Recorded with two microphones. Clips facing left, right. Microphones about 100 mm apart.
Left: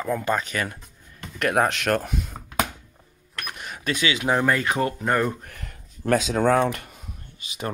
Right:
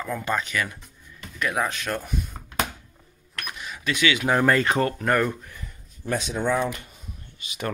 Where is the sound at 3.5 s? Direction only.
50° left (ahead or behind); by 4.2 s 35° left (ahead or behind).